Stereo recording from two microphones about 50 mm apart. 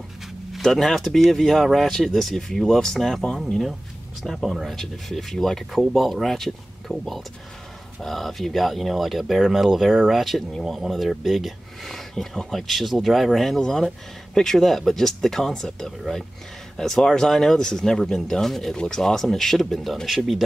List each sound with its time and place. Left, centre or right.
0.5 s speech: centre